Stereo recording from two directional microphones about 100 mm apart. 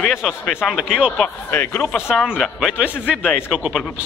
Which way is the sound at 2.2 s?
Centre (ahead or behind).